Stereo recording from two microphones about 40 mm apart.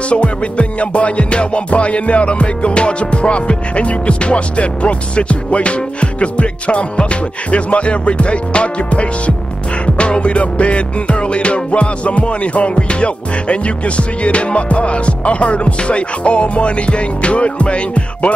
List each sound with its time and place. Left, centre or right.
0.1 s music: left